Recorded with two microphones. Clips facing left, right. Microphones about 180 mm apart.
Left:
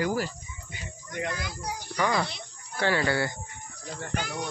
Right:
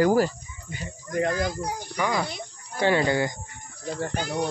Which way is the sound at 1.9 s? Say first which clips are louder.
Even; 10° right (ahead or behind).